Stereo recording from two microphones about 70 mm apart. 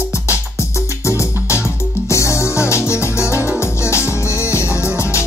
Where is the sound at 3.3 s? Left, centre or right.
Right.